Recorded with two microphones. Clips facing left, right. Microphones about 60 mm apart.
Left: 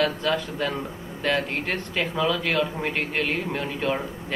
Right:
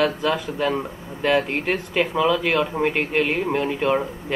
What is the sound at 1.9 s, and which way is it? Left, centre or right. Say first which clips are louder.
A man's voice: right 5 dB; right.